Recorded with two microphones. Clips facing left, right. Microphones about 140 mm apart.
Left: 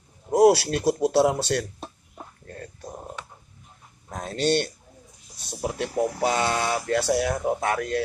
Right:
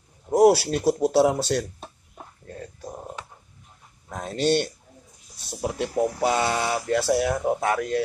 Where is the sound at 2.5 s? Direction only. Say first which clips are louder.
Right 3 dB; 5° right (ahead or behind).